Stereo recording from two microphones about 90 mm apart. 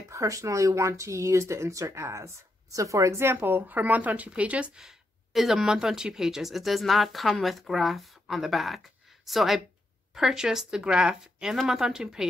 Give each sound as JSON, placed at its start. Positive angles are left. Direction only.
{"t": 0.1, "sound": "speech", "side_deg": -35}